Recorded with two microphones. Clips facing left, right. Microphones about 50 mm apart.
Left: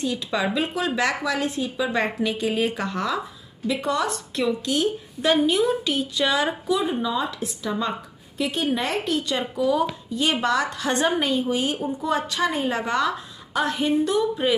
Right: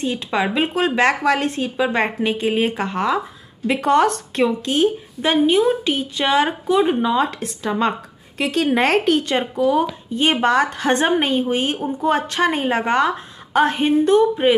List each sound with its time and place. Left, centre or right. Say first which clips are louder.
0.0 s speech: right 4 dB; right
1.9 s speech: right 4 dB; right
3.6 s speech: right 8 dB; right
4.5 s speech: right 2 dB; right
6.9 s speech: right 7 dB; right
8.4 s speech: right 6 dB; right